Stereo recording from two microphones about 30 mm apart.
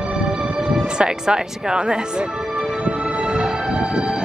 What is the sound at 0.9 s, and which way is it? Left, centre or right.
Speech, right.